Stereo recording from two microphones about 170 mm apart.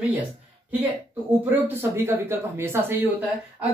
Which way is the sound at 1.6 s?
15° right (ahead or behind).